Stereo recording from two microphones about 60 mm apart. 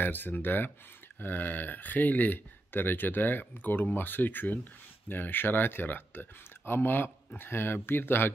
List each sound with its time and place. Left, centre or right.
0.0 s speech: left